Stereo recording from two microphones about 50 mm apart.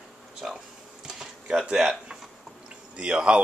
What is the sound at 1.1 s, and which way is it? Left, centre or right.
Insect, centre.